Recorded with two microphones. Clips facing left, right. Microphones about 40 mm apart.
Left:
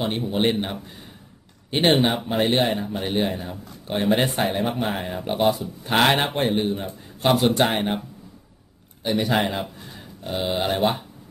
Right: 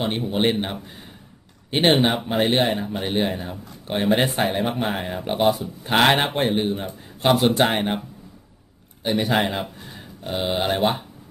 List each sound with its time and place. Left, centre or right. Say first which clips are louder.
0.0 s speech: right 1 dB; centre
9.1 s speech: right 1 dB; centre